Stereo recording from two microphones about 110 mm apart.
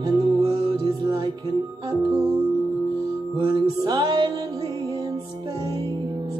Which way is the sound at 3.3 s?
40° right (ahead or behind).